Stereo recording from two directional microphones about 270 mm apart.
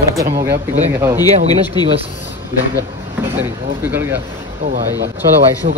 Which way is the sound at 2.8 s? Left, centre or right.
Centre.